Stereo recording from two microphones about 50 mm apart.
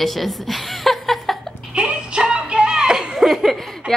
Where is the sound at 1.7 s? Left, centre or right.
Right.